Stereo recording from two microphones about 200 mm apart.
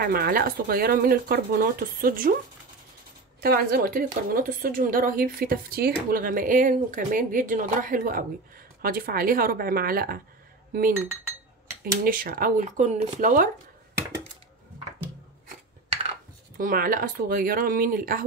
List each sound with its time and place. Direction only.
0.0 s a woman's voice: 50° right (ahead or behind)
3.3 s a woman's voice: 50° right (ahead or behind)
11.8 s a woman's voice: 45° right (ahead or behind)
16.5 s a woman's voice: 45° right (ahead or behind)